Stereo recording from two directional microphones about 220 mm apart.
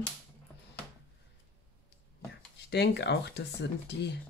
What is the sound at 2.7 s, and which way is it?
Speech, 50° left (ahead or behind).